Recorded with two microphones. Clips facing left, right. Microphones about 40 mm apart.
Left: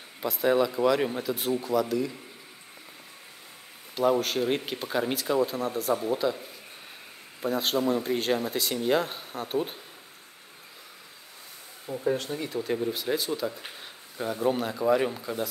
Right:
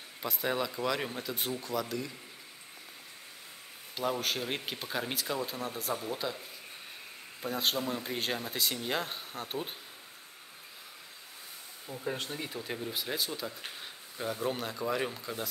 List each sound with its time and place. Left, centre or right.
0.2 s speech: centre
3.9 s speech: centre
11.8 s speech: centre
12.3 s speech: centre